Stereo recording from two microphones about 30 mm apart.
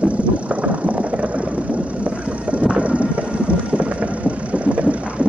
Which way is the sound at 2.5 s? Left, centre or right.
Right.